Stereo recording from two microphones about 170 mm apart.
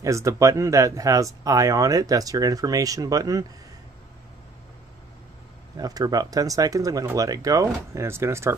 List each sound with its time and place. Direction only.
0.0 s speech: 20° right (ahead or behind)
5.8 s speech: 20° right (ahead or behind)